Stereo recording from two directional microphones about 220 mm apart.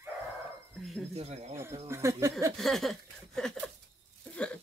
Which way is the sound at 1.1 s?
30° right (ahead or behind).